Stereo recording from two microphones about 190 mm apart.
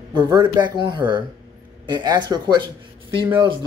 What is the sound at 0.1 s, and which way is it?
Speech, 20° right (ahead or behind).